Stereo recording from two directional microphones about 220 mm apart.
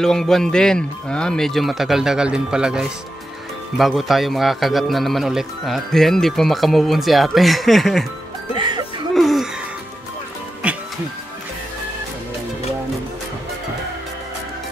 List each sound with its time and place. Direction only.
0.0 s a man's voice: centre (ahead or behind)
8.5 s music: 20° right (ahead or behind)
9.1 s music: centre (ahead or behind)
10.6 s music: 5° right (ahead or behind)